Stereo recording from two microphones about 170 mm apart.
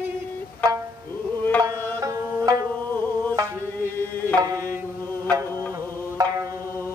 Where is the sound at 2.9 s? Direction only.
10° left (ahead or behind).